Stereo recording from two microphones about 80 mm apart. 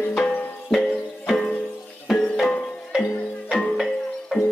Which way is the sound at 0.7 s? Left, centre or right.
Centre.